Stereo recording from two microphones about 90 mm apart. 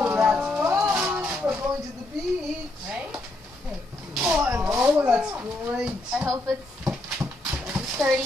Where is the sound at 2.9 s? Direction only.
15° right (ahead or behind).